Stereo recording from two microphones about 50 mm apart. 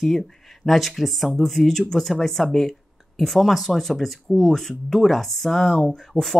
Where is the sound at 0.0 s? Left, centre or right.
Centre.